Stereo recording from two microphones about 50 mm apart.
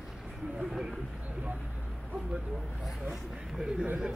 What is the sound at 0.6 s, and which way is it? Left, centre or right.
Speech, centre.